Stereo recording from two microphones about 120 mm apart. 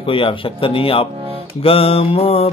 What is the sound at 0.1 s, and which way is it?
Speech, 50° left (ahead or behind).